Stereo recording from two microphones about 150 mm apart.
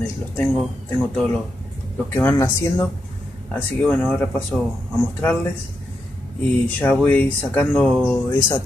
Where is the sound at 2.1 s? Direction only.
10° left (ahead or behind).